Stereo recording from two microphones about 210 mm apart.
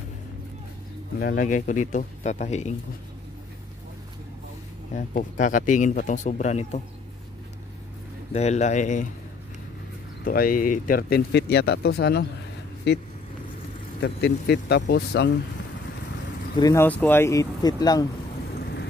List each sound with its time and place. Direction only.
1.2 s speech: 40° left (ahead or behind)
4.9 s speech: 35° left (ahead or behind)
8.3 s speech: 30° left (ahead or behind)
10.2 s speech: 40° left (ahead or behind)
14.0 s speech: 50° left (ahead or behind)
16.5 s speech: 15° left (ahead or behind)